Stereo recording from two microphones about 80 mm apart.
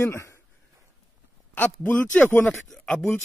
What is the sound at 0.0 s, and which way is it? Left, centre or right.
Speech, left.